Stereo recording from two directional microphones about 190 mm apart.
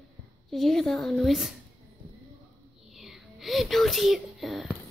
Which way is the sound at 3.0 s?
Centre (ahead or behind).